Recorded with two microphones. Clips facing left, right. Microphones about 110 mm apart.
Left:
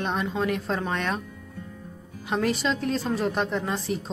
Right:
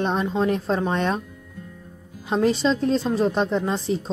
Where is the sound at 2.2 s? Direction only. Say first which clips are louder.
Right 5 dB; 25° right (ahead or behind).